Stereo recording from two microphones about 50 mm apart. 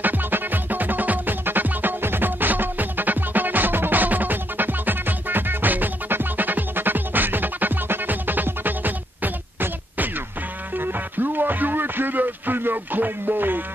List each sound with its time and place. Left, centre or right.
0.0 s music: right